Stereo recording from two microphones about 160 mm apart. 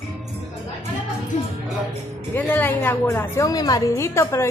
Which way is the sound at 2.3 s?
10° left (ahead or behind).